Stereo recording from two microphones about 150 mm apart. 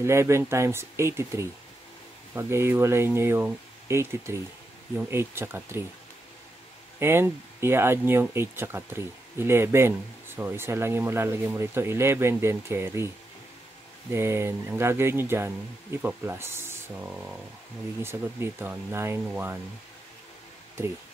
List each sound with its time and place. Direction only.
0.0 s speech: 20° right (ahead or behind)
7.0 s speech: 15° right (ahead or behind)
14.1 s speech: 15° right (ahead or behind)